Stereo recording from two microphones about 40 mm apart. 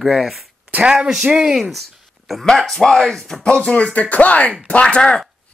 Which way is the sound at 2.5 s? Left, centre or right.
Centre.